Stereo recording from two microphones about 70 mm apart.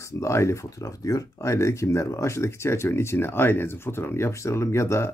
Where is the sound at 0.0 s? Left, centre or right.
Left.